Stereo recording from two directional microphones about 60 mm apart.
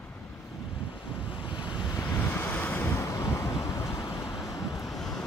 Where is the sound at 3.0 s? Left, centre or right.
Left.